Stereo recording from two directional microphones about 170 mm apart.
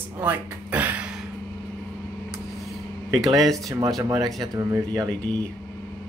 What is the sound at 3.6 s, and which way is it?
Speech, 20° right (ahead or behind).